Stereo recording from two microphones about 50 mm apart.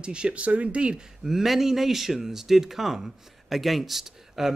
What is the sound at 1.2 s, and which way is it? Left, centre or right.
Speech, centre.